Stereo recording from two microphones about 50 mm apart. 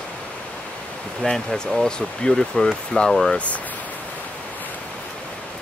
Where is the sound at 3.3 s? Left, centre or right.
Left.